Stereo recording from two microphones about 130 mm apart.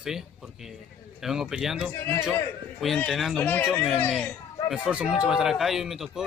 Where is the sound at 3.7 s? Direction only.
5° left (ahead or behind).